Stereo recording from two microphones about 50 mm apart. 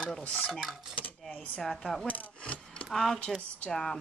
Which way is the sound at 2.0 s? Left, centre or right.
Left.